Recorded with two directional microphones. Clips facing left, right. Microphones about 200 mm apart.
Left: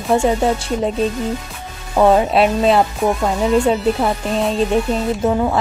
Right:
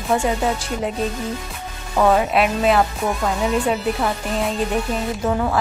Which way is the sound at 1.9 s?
25° left (ahead or behind).